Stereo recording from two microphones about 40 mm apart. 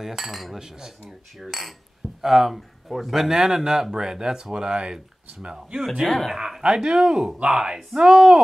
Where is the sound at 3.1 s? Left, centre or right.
Centre.